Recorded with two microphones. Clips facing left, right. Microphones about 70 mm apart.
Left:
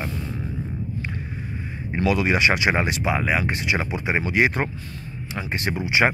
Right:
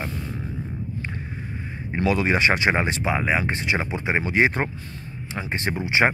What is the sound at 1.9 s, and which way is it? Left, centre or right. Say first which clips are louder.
Speech: even; right.